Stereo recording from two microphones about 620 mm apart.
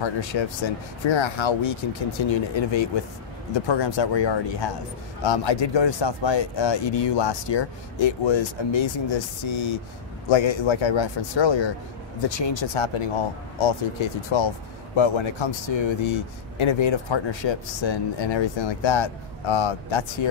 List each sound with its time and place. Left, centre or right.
0.0 s speech: left